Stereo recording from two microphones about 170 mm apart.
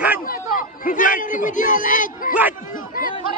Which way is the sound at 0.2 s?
55° left (ahead or behind).